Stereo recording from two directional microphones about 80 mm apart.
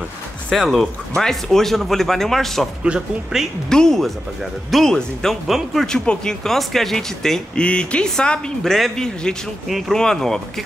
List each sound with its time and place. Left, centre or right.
0.5 s speech: centre
2.8 s speech: centre
3.7 s speech: centre